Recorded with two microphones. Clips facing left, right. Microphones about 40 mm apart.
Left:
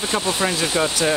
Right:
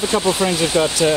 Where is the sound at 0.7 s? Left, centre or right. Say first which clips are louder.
Right 4 dB; left.